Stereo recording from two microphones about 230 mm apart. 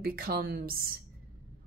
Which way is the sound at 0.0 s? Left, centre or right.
Right.